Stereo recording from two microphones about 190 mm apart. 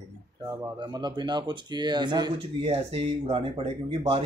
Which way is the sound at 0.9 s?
25° right (ahead or behind).